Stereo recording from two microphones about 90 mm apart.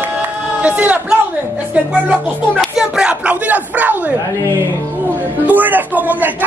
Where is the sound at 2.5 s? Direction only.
5° right (ahead or behind).